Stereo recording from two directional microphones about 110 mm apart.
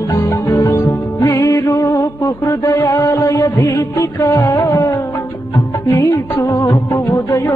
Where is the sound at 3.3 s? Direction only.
20° left (ahead or behind).